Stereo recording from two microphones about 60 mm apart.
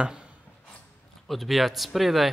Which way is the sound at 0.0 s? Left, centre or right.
Centre.